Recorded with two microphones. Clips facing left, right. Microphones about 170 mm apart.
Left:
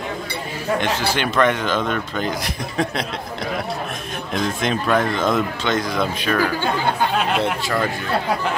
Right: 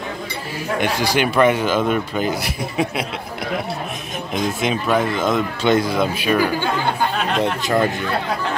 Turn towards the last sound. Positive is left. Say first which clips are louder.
# right 4 dB
turn(degrees=-20)  # may be behind; listen again after turning